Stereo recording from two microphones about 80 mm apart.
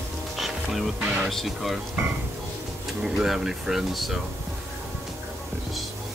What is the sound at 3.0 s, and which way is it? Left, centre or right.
Speech, centre.